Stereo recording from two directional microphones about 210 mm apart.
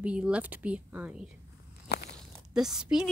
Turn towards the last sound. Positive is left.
turn(degrees=-5)  # may be behind; listen again after turning